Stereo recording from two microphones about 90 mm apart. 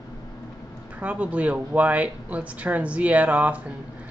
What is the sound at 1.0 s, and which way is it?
Speech, 15° right (ahead or behind).